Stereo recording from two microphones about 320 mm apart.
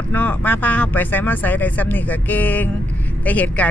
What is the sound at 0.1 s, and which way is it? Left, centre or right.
Speech, centre.